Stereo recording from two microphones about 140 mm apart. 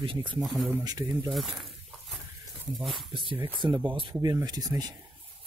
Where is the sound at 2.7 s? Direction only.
Centre (ahead or behind).